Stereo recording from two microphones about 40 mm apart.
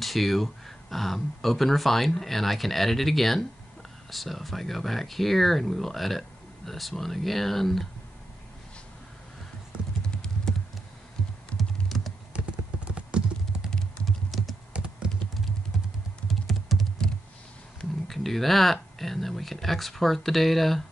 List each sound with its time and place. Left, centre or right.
0.0 s speech: centre
10.0 s clip-clop: centre
11.5 s typing: centre
12.4 s clip-clop: right
14.0 s typing: centre
14.7 s computer keyboard: right
16.3 s typing: centre
18.0 s speech: centre